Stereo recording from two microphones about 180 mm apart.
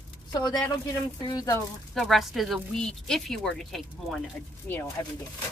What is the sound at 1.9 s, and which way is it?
Speech, centre (ahead or behind).